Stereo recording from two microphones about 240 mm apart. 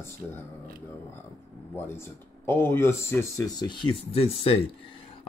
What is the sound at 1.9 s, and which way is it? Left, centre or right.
Speech, centre.